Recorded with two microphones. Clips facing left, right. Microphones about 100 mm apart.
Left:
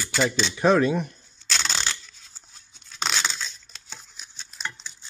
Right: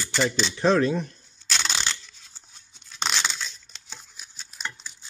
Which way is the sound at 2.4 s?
40° left (ahead or behind).